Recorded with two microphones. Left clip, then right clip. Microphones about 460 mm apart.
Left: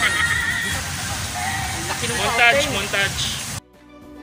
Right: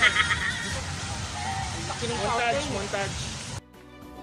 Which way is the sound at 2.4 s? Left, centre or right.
Right.